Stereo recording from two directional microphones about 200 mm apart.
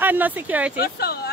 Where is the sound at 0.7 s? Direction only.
50° left (ahead or behind).